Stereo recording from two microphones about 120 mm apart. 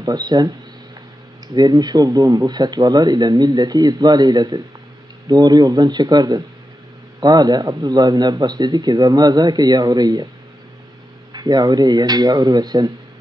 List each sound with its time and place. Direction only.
0.0 s speech: 35° right (ahead or behind)
1.5 s speech: 35° right (ahead or behind)
11.3 s speech: 35° right (ahead or behind)